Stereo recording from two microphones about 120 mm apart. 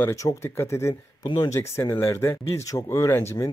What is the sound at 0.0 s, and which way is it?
Speech, 25° left (ahead or behind).